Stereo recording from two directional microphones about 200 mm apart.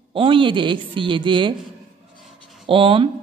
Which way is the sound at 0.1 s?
25° right (ahead or behind).